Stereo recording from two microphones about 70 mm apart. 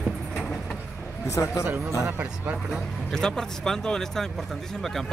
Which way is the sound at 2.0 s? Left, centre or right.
Right.